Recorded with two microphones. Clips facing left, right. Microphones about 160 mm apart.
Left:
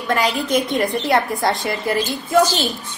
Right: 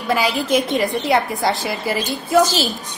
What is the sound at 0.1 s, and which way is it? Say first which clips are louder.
A woman's voice: right 1 dB; 5° right (ahead or behind).